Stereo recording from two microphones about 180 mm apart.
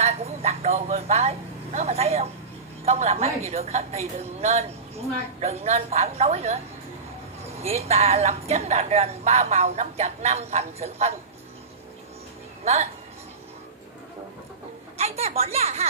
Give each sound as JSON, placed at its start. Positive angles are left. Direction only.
{"t": 0.0, "sound": "speech", "side_deg": -35}
{"t": 15.0, "sound": "speech", "side_deg": -35}